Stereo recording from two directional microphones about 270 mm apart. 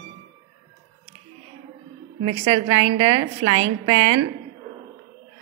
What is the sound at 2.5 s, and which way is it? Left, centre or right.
A woman's voice, right.